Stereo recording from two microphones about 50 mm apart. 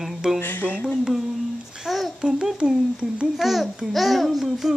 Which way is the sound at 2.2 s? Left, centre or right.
Centre.